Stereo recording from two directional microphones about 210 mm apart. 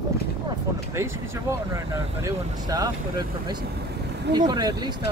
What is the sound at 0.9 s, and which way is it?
Speech, 15° right (ahead or behind).